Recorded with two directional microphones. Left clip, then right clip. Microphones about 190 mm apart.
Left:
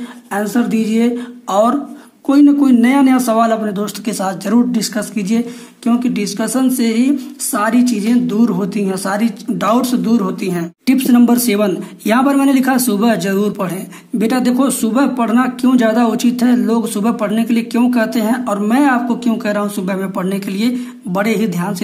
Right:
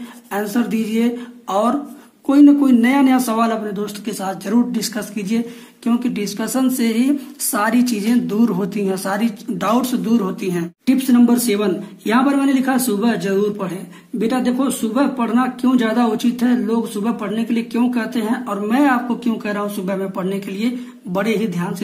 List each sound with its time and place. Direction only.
0.3 s a woman's voice: 20° left (ahead or behind)
10.9 s speech: 35° left (ahead or behind)